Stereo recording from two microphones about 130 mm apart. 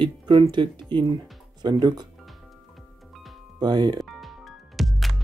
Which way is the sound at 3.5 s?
30° right (ahead or behind).